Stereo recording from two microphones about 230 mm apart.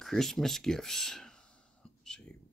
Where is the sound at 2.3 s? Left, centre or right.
Centre.